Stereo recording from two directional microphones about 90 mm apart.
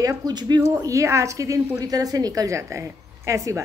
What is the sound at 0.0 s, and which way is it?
Speech, 45° right (ahead or behind).